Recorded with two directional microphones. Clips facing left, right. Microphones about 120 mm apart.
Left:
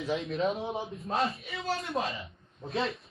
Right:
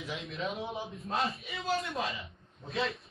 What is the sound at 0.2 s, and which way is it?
A man's voice, centre (ahead or behind).